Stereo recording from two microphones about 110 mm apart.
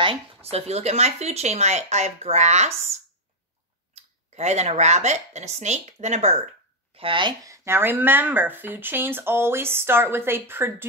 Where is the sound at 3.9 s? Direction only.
90° right.